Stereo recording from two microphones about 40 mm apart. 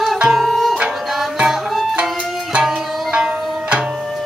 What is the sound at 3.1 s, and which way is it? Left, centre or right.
Music, right.